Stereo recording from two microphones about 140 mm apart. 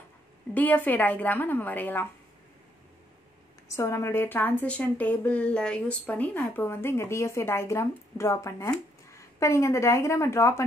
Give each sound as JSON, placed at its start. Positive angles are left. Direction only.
{"t": 0.6, "sound": "a woman's voice", "side_deg": 10}
{"t": 3.7, "sound": "a woman's voice", "side_deg": 20}